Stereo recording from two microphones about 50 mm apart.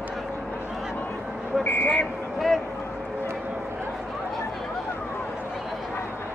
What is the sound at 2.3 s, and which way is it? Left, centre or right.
Speech, centre.